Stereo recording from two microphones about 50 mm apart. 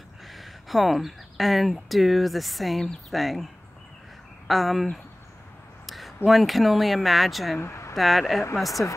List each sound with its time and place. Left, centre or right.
0.3 s speech: centre
4.5 s speech: centre
5.9 s a sound: centre
6.2 s speech: centre
7.5 s speech: left
7.9 s speech: centre